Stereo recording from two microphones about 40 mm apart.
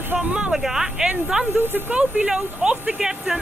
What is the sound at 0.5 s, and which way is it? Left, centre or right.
Speech, centre.